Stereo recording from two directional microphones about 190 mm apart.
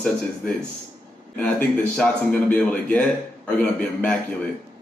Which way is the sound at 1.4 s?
5° left (ahead or behind).